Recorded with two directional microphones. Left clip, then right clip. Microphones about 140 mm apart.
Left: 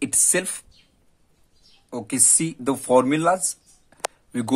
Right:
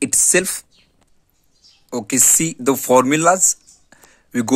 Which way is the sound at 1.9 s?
30° right (ahead or behind).